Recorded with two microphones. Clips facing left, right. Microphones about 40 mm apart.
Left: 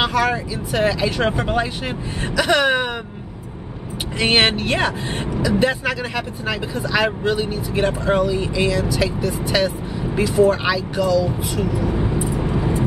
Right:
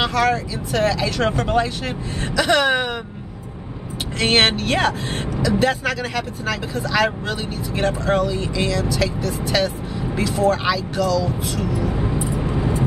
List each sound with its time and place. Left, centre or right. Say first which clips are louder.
0.0 s speech: even; centre
4.2 s speech: even; centre
10.6 s vehicle: left 1 dB; centre